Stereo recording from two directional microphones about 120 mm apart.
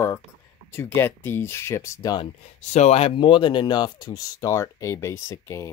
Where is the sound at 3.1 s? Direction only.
40° left (ahead or behind).